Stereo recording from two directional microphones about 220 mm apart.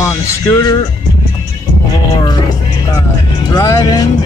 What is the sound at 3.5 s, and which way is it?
Speech, 15° left (ahead or behind).